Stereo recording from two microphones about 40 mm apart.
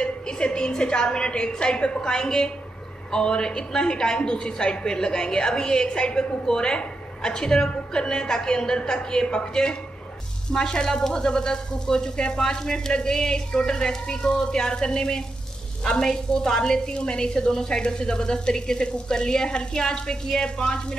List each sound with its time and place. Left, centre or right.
0.0 s a woman's voice: left